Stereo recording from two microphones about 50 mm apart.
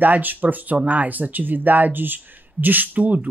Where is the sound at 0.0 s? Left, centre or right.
Right.